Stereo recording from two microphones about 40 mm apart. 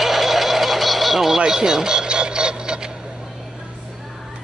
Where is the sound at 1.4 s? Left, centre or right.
Centre.